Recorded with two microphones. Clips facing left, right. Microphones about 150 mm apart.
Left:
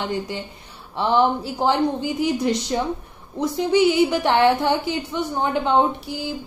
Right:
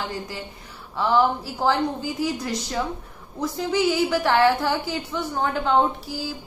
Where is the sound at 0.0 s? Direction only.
25° left (ahead or behind).